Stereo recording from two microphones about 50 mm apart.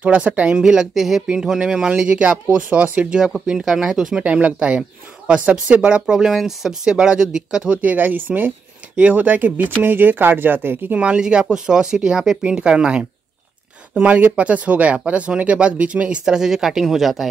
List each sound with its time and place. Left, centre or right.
0.0 s speech: right
0.6 s speech: centre
1.6 s speech: centre
4.2 s speech: right
7.8 s speech: right
11.0 s speech: right
13.9 s speech: right
16.3 s speech: centre